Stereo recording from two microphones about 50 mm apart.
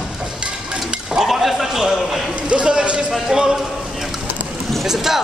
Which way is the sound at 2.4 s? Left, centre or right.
Centre.